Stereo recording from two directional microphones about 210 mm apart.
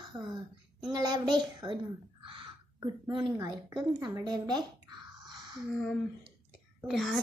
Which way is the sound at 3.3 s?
15° right (ahead or behind).